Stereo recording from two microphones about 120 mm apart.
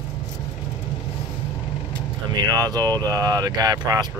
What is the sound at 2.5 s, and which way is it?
Speech, 30° right (ahead or behind).